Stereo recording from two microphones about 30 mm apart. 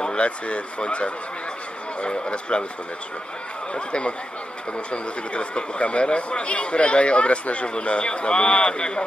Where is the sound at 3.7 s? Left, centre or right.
Left.